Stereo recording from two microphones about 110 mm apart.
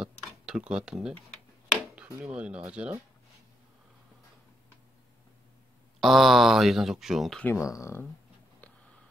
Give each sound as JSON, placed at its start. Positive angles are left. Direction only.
{"t": 0.0, "sound": "tick-tock", "side_deg": -5}
{"t": 1.7, "sound": "speech", "side_deg": -10}
{"t": 5.9, "sound": "speech", "side_deg": 0}
{"t": 7.4, "sound": "speech", "side_deg": 25}